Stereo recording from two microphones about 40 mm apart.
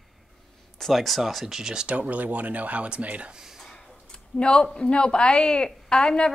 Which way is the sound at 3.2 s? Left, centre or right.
Centre.